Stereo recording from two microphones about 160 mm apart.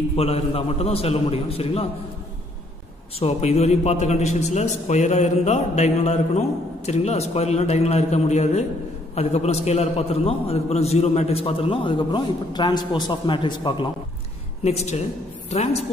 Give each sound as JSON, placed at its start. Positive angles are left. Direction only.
{"t": 0.1, "sound": "a man's voice", "side_deg": 40}
{"t": 3.2, "sound": "a man's voice", "side_deg": 40}
{"t": 14.6, "sound": "a man's voice", "side_deg": 45}